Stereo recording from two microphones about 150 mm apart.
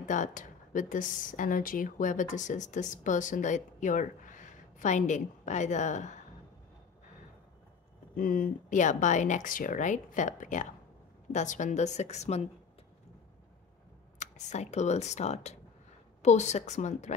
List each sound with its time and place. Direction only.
0.0 s speech: 55° left (ahead or behind)
8.2 s speech: 65° left (ahead or behind); by 12.4 s 45° left (ahead or behind)
14.2 s speech: 50° left (ahead or behind)